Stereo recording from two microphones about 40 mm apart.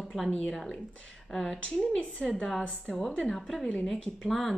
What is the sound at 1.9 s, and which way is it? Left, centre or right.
Speech, left.